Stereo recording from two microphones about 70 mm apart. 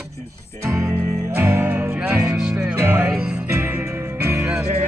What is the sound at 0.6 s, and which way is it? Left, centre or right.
Music, right.